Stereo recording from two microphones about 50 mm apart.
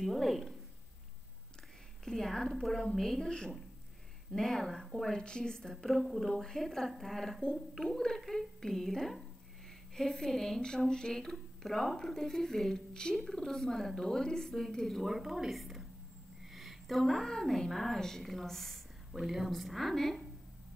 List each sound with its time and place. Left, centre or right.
0.0 s a sound: centre
2.0 s a sound: centre
2.5 s a woman's voice: centre
5.1 s a woman's voice: centre
5.6 s a woman's voice: centre
19.1 s a woman's voice: centre
19.5 s speech: centre